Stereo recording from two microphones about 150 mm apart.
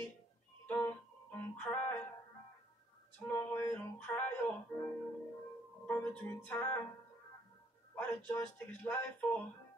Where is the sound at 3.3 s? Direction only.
20° left (ahead or behind).